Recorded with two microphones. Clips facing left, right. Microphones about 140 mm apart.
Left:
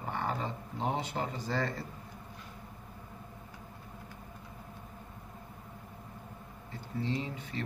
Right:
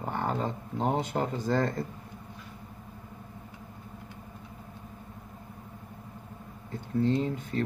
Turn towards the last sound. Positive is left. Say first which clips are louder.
# right 7 dB
turn(degrees=-50)  # may be behind; listen again after turning